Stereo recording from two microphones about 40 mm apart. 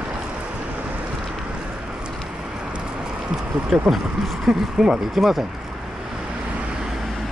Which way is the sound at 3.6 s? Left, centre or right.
Centre.